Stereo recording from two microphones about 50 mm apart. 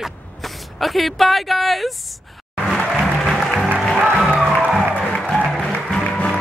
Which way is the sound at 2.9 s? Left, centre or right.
Centre.